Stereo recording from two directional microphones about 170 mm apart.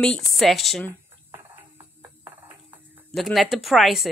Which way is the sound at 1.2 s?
15° right (ahead or behind).